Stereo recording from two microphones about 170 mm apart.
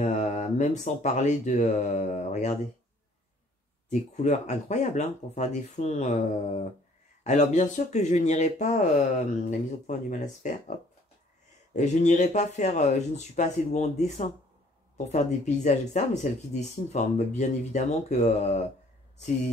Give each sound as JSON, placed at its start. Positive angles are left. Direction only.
{"t": 0.0, "sound": "speech", "side_deg": 45}
{"t": 4.2, "sound": "speech", "side_deg": 45}
{"t": 11.7, "sound": "speech", "side_deg": 45}